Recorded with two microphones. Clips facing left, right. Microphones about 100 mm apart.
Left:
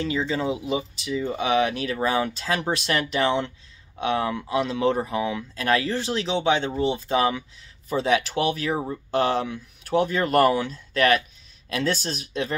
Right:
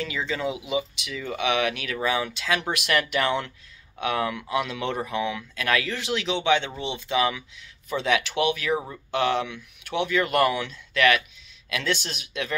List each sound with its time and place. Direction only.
0.3 s speech: 30° left (ahead or behind)